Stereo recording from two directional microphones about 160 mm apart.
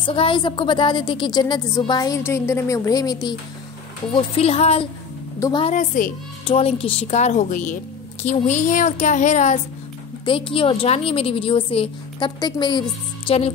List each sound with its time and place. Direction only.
0.0 s a woman's voice: 35° left (ahead or behind)
4.1 s a woman's voice: 40° left (ahead or behind)
5.4 s a woman's voice: 30° left (ahead or behind)
5.7 s a woman's voice: 55° left (ahead or behind)
6.4 s a woman's voice: 40° left (ahead or behind)
10.2 s a woman's voice: 35° left (ahead or behind)